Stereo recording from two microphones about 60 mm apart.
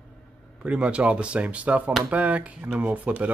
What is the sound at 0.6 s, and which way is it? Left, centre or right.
Speech, centre.